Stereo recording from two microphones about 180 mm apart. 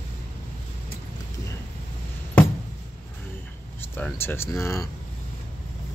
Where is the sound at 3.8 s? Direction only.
10° left (ahead or behind).